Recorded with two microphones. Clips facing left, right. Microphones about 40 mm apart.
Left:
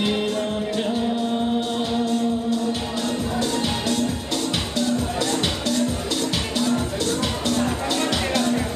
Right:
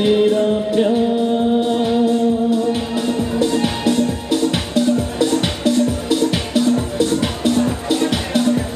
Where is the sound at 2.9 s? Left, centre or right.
Centre.